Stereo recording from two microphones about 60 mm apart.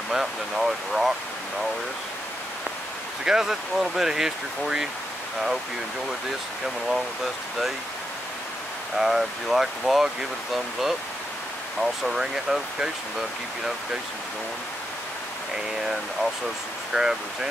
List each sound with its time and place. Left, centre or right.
0.1 s speech: centre
3.3 s speech: centre
8.9 s speech: centre
16.9 s speech: centre